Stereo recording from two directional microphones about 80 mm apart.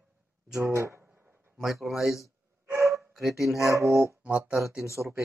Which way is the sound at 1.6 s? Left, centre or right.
Centre.